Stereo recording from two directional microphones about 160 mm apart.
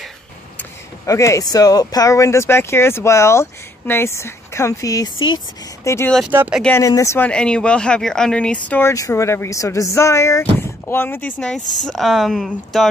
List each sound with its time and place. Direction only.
1.0 s speech: 20° left (ahead or behind)
5.9 s speech: 15° left (ahead or behind)
6.3 s speech: 10° right (ahead or behind)
6.8 s speech: 20° left (ahead or behind)
7.2 s speech: 5° left (ahead or behind)